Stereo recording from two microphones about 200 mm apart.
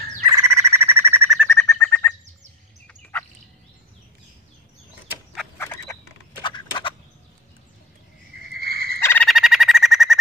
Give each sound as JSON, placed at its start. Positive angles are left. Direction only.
{"t": 0.3, "sound": "bird", "side_deg": -15}
{"t": 1.5, "sound": "bird", "side_deg": 10}
{"t": 2.9, "sound": "turkey", "side_deg": 10}
{"t": 6.4, "sound": "a sound", "side_deg": 25}
{"t": 8.5, "sound": "turkey", "side_deg": -50}
{"t": 9.0, "sound": "frog", "side_deg": 10}
{"t": 9.3, "sound": "bird", "side_deg": 0}